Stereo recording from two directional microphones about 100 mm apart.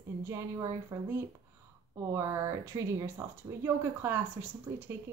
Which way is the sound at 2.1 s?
30° right (ahead or behind).